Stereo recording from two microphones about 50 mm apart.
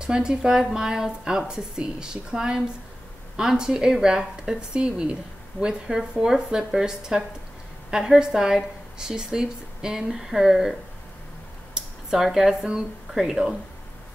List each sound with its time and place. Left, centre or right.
0.0 s a woman's voice: centre
11.7 s a sound: centre
13.1 s a woman's voice: centre